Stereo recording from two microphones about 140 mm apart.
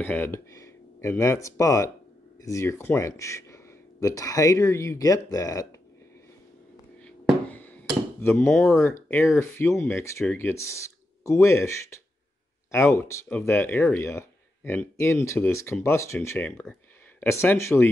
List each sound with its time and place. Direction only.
0.0 s speech: 15° left (ahead or behind)
7.0 s a sound: 10° left (ahead or behind)
8.2 s speech: 15° left (ahead or behind)